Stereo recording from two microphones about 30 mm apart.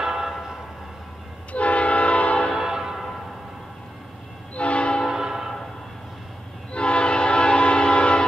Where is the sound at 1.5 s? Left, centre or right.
Left.